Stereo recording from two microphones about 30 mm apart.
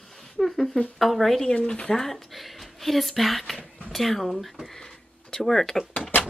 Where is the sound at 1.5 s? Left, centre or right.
Left.